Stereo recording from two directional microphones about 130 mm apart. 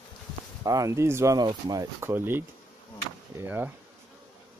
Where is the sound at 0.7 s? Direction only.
25° right (ahead or behind).